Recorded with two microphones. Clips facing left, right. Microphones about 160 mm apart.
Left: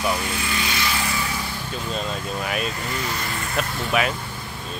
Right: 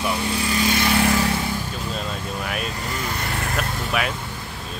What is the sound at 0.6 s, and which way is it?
Vehicle, 50° right (ahead or behind).